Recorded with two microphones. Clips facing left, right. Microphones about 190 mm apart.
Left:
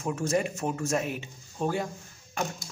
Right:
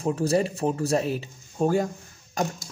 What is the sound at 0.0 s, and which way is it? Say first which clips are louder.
Speech: right 5 dB; 35° right (ahead or behind).